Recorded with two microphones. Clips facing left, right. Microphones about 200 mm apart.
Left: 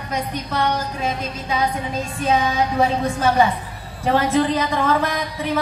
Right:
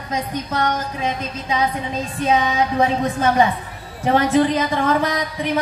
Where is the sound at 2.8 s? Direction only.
20° right (ahead or behind).